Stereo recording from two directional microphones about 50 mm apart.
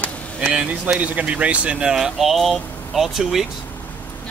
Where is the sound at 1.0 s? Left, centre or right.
Right.